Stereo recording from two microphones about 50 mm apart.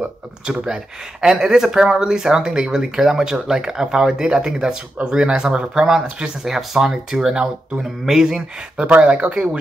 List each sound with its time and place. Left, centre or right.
1.2 s speech: centre
6.4 s speech: centre
8.8 s speech: right